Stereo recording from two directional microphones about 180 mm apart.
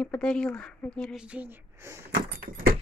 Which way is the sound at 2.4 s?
55° right (ahead or behind).